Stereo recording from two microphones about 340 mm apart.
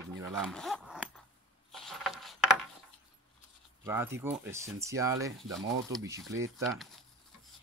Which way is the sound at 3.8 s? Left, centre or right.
Centre.